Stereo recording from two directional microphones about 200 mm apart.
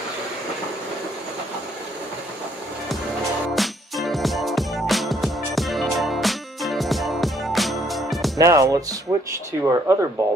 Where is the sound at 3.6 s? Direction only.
Centre (ahead or behind).